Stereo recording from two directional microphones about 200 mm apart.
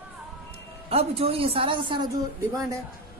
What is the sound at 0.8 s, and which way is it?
Speech, 30° right (ahead or behind).